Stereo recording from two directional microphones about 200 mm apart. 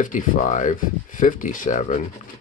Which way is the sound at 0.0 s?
40° left (ahead or behind).